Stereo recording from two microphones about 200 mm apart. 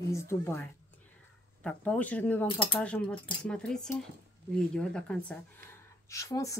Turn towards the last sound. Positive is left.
turn(degrees=15)  # may be behind; listen again after turning